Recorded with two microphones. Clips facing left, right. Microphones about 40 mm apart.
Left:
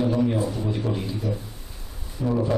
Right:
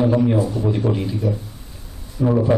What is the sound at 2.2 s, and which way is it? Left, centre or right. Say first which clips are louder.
Speech: right 6 dB; right.